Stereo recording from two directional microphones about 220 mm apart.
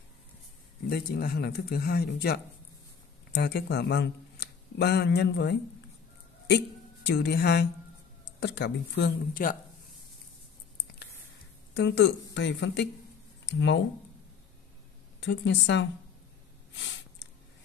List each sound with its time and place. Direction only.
0.8 s speech: 45° left (ahead or behind)
11.7 s speech: 50° left (ahead or behind)
15.1 s speech: 55° left (ahead or behind)
16.7 s a sound: 55° left (ahead or behind)